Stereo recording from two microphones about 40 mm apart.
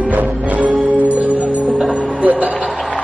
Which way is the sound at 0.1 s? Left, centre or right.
Right.